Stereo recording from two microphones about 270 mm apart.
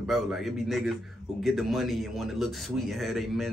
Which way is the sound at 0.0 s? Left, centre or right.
Centre.